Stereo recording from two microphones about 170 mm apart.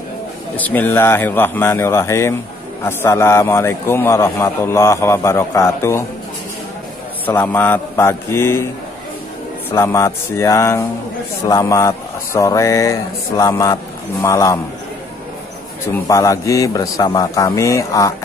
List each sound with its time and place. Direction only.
0.6 s a man's voice: 10° left (ahead or behind)
7.2 s a man's voice: 10° left (ahead or behind)
9.7 s a man's voice: 15° left (ahead or behind)
15.9 s a man's voice: 20° left (ahead or behind)